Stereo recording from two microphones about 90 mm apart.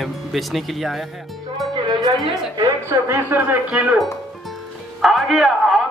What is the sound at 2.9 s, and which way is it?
Speech, 30° right (ahead or behind).